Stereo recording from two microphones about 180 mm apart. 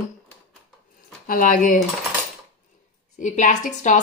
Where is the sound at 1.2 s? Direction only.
50° left (ahead or behind).